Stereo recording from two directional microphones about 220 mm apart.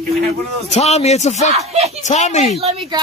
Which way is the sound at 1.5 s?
30° right (ahead or behind).